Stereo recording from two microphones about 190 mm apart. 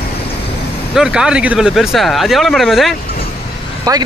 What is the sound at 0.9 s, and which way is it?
Speech, 5° right (ahead or behind).